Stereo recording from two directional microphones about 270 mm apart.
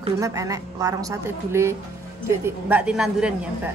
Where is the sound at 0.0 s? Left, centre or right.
Centre.